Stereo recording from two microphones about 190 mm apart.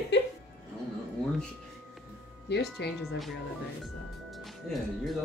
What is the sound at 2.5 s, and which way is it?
Speech, 60° left (ahead or behind).